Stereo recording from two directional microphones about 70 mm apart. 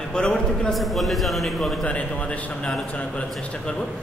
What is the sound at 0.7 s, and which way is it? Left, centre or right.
A man's voice, centre.